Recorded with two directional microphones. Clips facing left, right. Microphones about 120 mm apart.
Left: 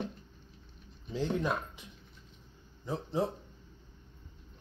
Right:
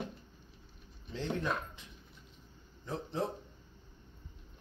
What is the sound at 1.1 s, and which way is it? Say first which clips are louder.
Speech: left 3 dB; 10° left (ahead or behind).